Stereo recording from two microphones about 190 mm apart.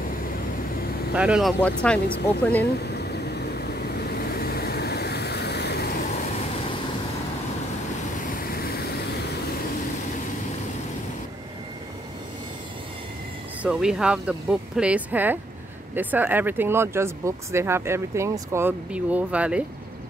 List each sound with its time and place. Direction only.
1.1 s speech: 5° right (ahead or behind)
2.9 s vehicle: 60° left (ahead or behind)
8.4 s vehicle: 50° left (ahead or behind)
13.6 s speech: 5° right (ahead or behind)